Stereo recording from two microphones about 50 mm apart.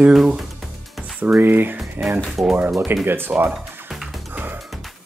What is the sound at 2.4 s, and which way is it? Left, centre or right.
Speech, right.